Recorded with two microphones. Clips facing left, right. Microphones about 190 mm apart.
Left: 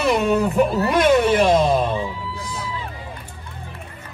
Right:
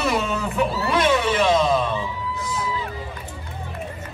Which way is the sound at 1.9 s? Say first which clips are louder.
Left 2 dB; 30° left (ahead or behind).